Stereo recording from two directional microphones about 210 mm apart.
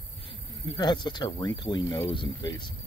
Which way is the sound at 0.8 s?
20° left (ahead or behind).